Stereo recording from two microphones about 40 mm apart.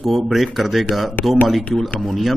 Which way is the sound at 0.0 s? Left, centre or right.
Centre.